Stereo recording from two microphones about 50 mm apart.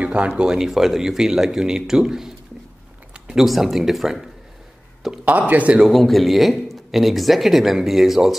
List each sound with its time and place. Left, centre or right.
0.0 s speech: right
0.6 s a man's voice: centre
5.5 s speech: right
5.9 s speech: centre